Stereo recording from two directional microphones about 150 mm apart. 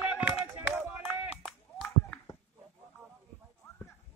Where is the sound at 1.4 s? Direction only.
5° left (ahead or behind).